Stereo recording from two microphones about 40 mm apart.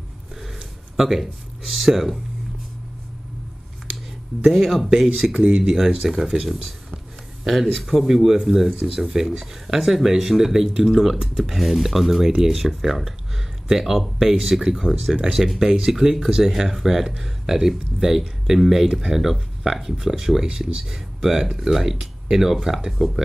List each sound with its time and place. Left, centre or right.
1.0 s speech: centre
4.5 s speech: centre
5.2 s speech: right
6.0 s speech: centre
20.4 s speech: centre